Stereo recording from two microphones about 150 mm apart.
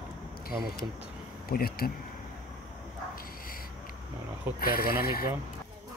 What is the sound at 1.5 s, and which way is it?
Speech, 85° left.